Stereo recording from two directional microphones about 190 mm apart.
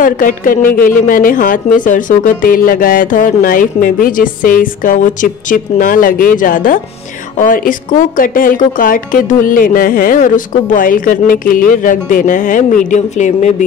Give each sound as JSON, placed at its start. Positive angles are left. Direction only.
{"t": 0.0, "sound": "speech", "side_deg": 45}